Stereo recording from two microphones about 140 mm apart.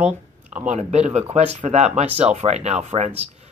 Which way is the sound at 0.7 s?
55° right (ahead or behind).